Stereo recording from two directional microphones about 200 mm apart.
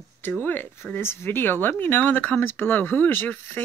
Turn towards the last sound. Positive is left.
turn(degrees=10)  # may be behind; listen again after turning